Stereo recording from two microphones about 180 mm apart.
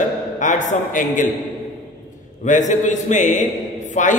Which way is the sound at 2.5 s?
45° left (ahead or behind).